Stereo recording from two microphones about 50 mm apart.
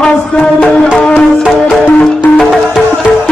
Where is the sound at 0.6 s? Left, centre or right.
Left.